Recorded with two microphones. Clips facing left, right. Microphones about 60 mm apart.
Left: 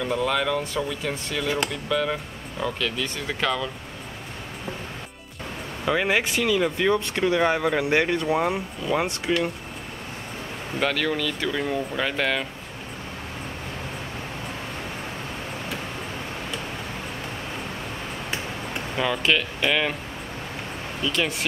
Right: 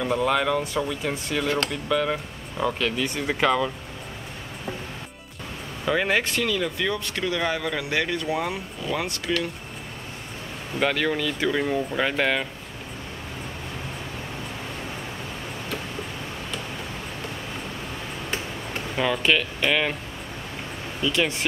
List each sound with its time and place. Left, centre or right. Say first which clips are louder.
0.0 s speech: right 1 dB; centre
5.9 s speech: even; centre; by 9.5 s left
10.8 s speech: right 1 dB; centre
18.9 s speech: right 1 dB; centre
21.0 s speech: right 2 dB; centre